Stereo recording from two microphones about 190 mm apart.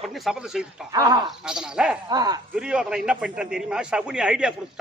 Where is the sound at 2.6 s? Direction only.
5° right (ahead or behind).